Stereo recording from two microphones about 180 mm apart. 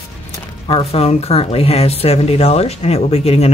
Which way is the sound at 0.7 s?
35° left (ahead or behind).